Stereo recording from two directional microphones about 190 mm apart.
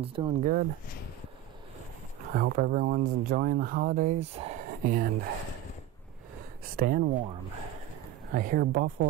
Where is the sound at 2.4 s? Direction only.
50° right (ahead or behind).